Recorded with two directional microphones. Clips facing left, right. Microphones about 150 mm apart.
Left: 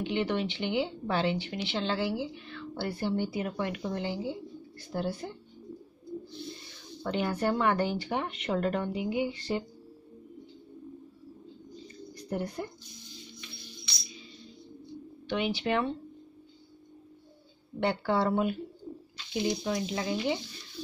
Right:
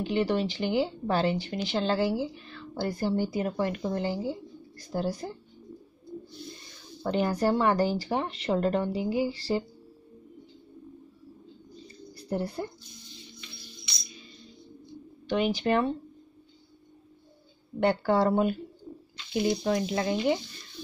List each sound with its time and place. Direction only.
0.0 s speech: 40° right (ahead or behind)
7.0 s speech: 35° right (ahead or behind)
12.1 s bird: 35° right (ahead or behind)
15.2 s speech: 40° right (ahead or behind)
17.7 s speech: 45° right (ahead or behind)
18.9 s bird: 10° left (ahead or behind)
19.4 s speech: 55° right (ahead or behind)